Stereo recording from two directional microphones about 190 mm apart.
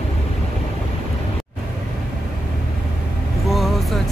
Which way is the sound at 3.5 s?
Centre (ahead or behind).